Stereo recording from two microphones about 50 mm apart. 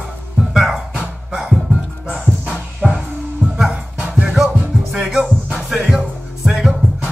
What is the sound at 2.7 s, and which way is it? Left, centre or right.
Music, centre.